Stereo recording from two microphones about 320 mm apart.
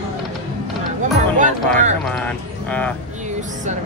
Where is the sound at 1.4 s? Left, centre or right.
Right.